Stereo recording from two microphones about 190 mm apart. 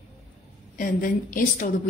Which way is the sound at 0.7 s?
45° left (ahead or behind).